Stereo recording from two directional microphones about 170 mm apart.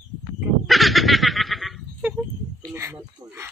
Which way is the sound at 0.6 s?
Centre (ahead or behind).